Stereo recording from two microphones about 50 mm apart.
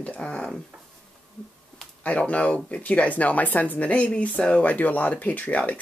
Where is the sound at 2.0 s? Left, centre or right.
Left.